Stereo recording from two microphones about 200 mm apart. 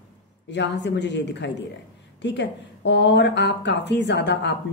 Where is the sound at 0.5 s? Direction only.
60° left (ahead or behind).